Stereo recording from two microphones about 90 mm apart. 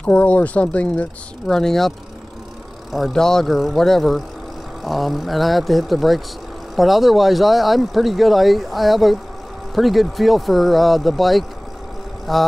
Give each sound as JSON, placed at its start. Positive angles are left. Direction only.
{"t": 0.0, "sound": "speech", "side_deg": 15}